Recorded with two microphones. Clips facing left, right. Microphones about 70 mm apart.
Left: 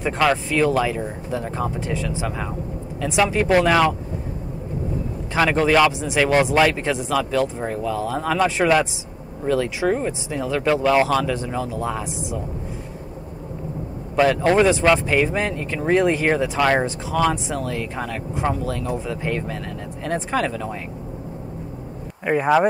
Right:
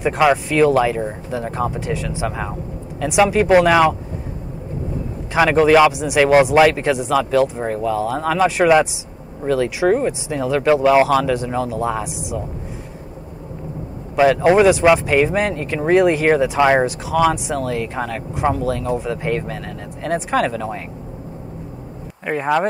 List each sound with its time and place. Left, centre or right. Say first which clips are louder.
0.0 s speech: right 4 dB; centre
5.5 s speech: right 5 dB; centre
14.4 s speech: right 5 dB; centre
17.1 s speech: right 3 dB; centre
22.2 s speech: left 1 dB; centre